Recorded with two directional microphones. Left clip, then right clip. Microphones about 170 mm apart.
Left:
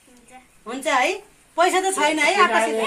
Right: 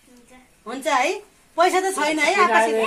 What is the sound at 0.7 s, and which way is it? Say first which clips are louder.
A woman's voice: even; centre (ahead or behind).